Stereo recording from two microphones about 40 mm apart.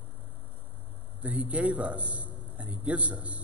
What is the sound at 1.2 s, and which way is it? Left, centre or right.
A man's voice, right.